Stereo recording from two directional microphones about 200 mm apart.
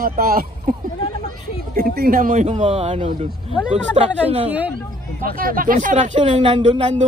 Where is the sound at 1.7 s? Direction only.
50° right (ahead or behind); by 4.4 s 30° right (ahead or behind).